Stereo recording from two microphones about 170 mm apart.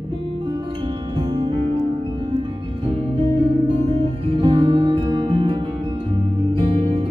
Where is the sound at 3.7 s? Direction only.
30° right (ahead or behind).